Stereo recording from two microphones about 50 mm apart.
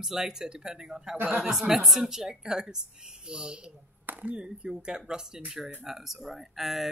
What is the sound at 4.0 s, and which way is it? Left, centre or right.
Speech, right.